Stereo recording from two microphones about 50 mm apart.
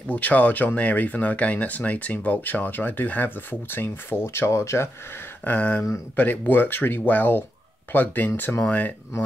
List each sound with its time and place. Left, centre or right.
0.1 s speech: left
5.4 s speech: left